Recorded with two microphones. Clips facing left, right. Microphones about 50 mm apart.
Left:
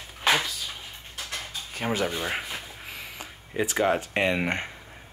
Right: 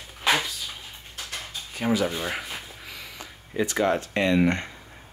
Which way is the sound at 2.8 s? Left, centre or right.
Left.